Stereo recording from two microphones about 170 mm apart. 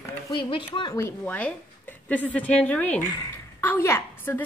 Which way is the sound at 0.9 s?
10° left (ahead or behind).